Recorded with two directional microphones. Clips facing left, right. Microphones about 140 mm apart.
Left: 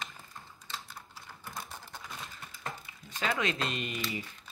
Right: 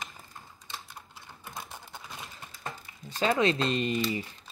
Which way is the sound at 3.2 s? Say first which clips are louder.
Right 7 dB; 30° right (ahead or behind).